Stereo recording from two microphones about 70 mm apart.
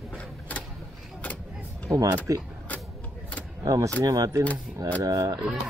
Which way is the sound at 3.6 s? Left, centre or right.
Right.